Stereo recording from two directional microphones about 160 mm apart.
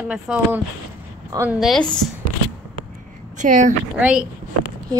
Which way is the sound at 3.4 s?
50° right (ahead or behind).